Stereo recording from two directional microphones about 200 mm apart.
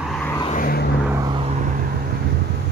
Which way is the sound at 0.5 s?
45° left (ahead or behind).